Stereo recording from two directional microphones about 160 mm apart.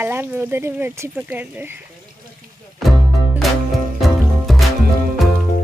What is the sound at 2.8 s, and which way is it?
Music, centre (ahead or behind).